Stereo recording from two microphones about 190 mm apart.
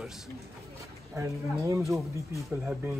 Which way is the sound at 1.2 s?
15° right (ahead or behind).